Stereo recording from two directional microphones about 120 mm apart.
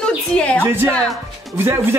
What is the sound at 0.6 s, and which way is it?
Speech, 20° right (ahead or behind).